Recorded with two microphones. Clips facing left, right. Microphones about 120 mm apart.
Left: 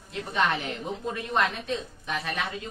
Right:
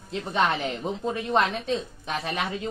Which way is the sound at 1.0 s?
30° right (ahead or behind).